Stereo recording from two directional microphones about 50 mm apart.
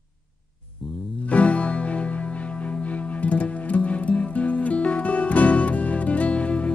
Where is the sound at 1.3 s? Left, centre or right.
Left.